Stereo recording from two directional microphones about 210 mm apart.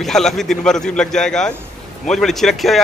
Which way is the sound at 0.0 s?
Centre (ahead or behind).